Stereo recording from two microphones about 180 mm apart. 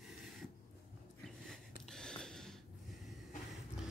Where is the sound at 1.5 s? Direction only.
5° left (ahead or behind).